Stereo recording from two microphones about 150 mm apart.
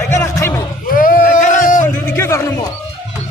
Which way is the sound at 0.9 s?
70° left (ahead or behind).